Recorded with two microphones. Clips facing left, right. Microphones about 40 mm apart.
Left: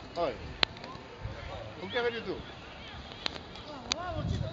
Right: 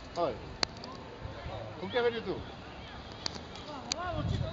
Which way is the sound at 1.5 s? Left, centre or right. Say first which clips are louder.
Right 2 dB; left.